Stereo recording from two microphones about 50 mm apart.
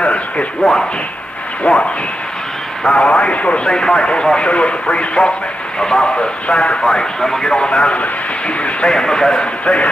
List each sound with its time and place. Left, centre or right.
0.0 s speech: left
1.6 s speech: left